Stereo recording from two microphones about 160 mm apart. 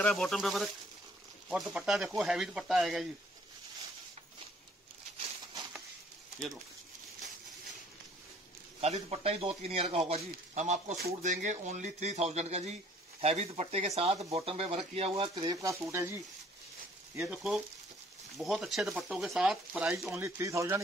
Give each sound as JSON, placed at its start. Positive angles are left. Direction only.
{"t": 0.0, "sound": "speech", "side_deg": 0}
{"t": 8.8, "sound": "speech", "side_deg": -40}
{"t": 15.3, "sound": "speech", "side_deg": -25}
{"t": 18.4, "sound": "speech", "side_deg": 0}
{"t": 20.2, "sound": "speech", "side_deg": -15}